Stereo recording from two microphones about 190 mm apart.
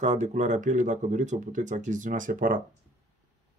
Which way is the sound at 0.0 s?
40° right (ahead or behind).